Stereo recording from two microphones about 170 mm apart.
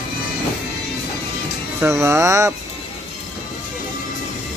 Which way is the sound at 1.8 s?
15° right (ahead or behind).